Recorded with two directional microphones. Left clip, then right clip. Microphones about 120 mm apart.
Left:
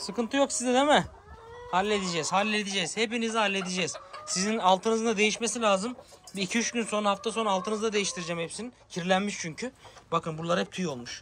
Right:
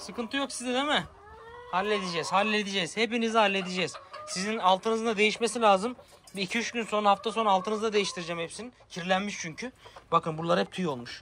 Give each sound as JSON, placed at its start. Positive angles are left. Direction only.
{"t": 0.0, "sound": "speech", "side_deg": 55}
{"t": 1.7, "sound": "speech", "side_deg": 35}
{"t": 2.4, "sound": "speech", "side_deg": 20}
{"t": 6.3, "sound": "speech", "side_deg": 30}
{"t": 7.1, "sound": "speech", "side_deg": 20}
{"t": 8.3, "sound": "speech", "side_deg": 35}
{"t": 10.0, "sound": "speech", "side_deg": 15}